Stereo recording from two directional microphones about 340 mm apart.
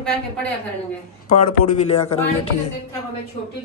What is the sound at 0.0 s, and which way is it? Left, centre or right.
Speech, centre.